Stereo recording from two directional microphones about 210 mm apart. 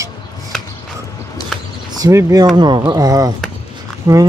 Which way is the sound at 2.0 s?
15° right (ahead or behind).